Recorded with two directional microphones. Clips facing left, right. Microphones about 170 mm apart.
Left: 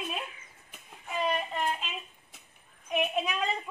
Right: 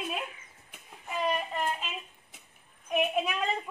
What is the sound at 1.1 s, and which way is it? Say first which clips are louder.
Child singing: even; 5° right (ahead or behind).